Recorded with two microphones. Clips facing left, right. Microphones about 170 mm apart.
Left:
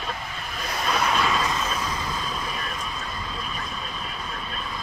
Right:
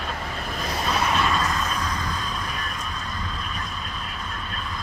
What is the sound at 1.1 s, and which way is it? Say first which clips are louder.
Vehicle: even; centre (ahead or behind).